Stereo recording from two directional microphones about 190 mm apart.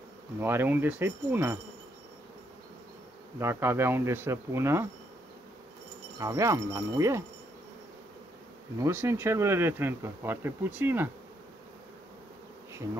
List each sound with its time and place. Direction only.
0.4 s speech: 10° right (ahead or behind)
3.3 s speech: 15° right (ahead or behind)
6.1 s speech: 15° right (ahead or behind)
8.7 s speech: 15° right (ahead or behind)